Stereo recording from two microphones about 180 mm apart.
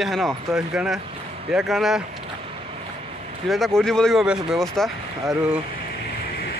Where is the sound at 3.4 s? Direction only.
Centre (ahead or behind).